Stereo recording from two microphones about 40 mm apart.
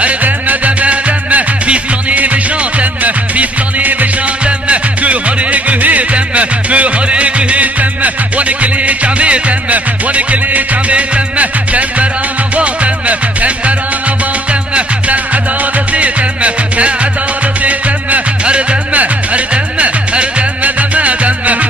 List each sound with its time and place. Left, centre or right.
0.0 s music: right